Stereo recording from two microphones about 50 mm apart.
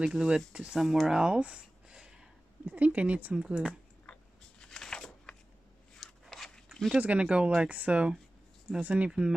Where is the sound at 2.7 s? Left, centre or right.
Right.